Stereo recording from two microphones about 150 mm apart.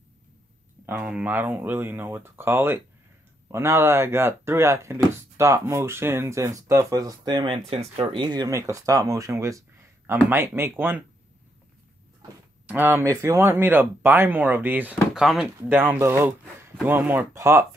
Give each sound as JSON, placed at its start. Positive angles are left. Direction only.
{"t": 0.8, "sound": "speech", "side_deg": -10}
{"t": 12.6, "sound": "speech", "side_deg": -15}
{"t": 15.7, "sound": "speech", "side_deg": -15}